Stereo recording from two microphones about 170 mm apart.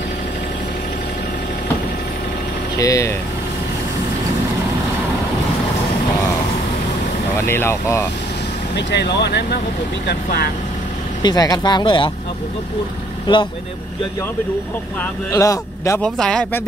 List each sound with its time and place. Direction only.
2.8 s speech: 20° left (ahead or behind)
7.3 s speech: 15° left (ahead or behind)
8.7 s speech: 85° left
10.0 s speech: 70° left (ahead or behind)
11.2 s speech: 25° left (ahead or behind)
15.3 s speech: 20° left (ahead or behind)
16.0 s a man's voice: 5° left (ahead or behind)